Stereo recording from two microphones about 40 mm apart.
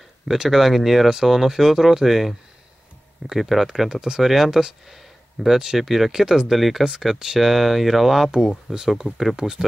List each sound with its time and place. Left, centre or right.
0.3 s speech: centre